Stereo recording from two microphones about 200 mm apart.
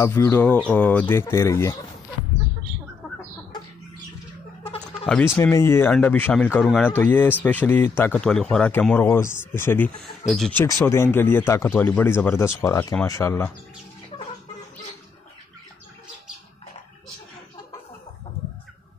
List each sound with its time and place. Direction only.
0.0 s speech: 10° left (ahead or behind)
4.6 s a sound: 30° left (ahead or behind)
5.0 s speech: 10° left (ahead or behind)
10.6 s speech: 15° left (ahead or behind)